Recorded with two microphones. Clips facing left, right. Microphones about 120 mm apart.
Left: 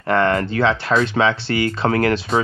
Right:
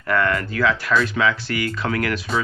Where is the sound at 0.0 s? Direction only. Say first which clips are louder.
Left 4 dB; 30° left (ahead or behind).